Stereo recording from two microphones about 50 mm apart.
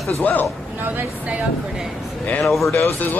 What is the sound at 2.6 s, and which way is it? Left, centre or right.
Speech, left.